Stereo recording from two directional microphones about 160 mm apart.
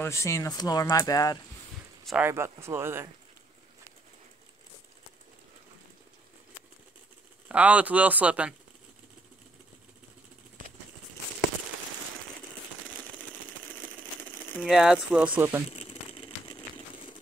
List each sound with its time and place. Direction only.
0.0 s speech: 20° left (ahead or behind)
2.2 s speech: 15° right (ahead or behind)
7.4 s speech: 10° right (ahead or behind)
14.6 s speech: 5° right (ahead or behind)
15.8 s crumpling: 40° left (ahead or behind)